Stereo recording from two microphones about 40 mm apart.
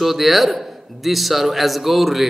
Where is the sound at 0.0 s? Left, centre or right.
Centre.